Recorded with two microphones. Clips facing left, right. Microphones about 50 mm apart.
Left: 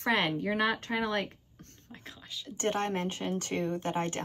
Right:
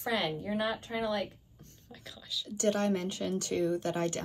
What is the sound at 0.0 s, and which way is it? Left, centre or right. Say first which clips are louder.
Speech: left 4 dB; left.